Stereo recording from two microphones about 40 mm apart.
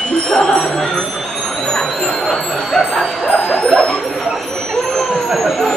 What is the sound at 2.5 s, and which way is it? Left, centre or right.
Speech, centre.